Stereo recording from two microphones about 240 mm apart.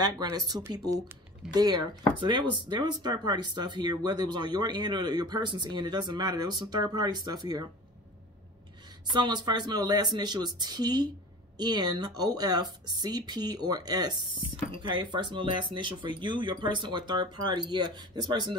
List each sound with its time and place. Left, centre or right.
0.0 s speech: centre
9.1 s speech: centre